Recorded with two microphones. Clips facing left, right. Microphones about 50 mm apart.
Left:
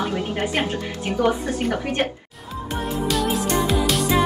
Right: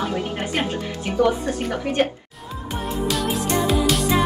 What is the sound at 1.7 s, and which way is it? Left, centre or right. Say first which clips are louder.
Speech: right 2 dB; left.